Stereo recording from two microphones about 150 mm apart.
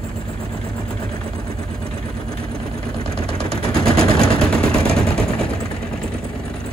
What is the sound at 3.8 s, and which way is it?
Machine gun, 40° right (ahead or behind).